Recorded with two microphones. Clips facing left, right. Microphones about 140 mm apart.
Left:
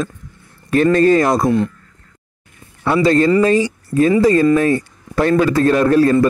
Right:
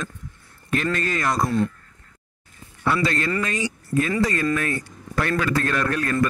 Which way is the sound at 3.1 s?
30° left (ahead or behind).